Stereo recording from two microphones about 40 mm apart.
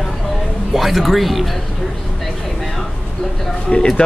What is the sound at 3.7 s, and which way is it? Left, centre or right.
Speech, left.